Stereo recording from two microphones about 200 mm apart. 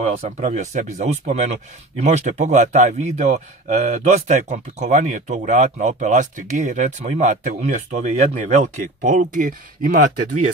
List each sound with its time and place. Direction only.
0.4 s speech: 35° right (ahead or behind)